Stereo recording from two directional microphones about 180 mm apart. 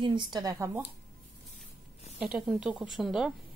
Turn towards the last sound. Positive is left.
turn(degrees=0)  # may be behind; listen again after turning